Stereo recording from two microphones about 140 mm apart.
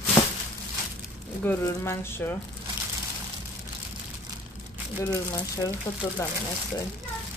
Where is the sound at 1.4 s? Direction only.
15° left (ahead or behind).